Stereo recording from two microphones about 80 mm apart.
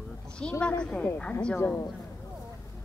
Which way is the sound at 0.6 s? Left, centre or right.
Centre.